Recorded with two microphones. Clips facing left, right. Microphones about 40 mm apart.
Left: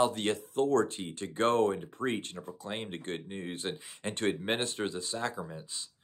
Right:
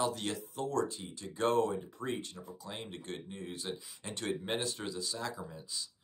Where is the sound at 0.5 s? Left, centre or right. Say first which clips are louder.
Left 7 dB; left.